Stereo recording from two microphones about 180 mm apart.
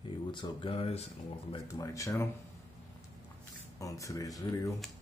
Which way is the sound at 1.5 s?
20° left (ahead or behind).